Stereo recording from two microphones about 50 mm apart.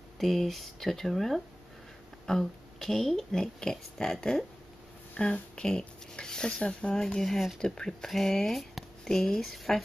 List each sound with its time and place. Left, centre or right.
0.2 s speech: centre
5.1 s speech: left
5.6 s speech: centre
7.1 s speech: centre